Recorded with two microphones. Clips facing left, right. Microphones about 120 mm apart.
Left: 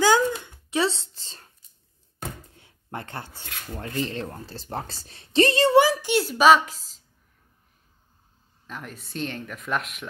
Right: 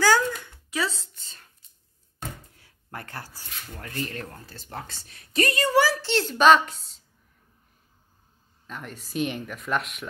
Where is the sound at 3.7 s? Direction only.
25° left (ahead or behind); by 7.0 s centre (ahead or behind).